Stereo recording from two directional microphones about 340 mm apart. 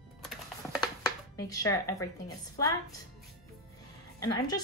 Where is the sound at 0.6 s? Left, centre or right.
Centre.